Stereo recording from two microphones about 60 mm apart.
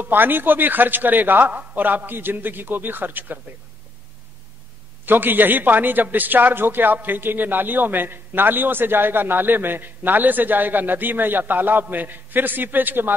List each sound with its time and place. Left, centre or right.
0.0 s a man's voice: right
5.0 s a man's voice: right